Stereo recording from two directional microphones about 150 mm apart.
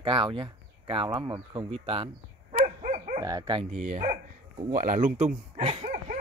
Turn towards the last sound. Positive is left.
turn(degrees=-55)  # may be behind; listen again after turning